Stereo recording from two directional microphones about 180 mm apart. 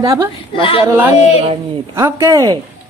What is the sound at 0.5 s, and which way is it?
Speech, 30° left (ahead or behind).